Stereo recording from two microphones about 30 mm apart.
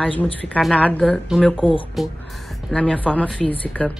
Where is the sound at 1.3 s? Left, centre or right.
Right.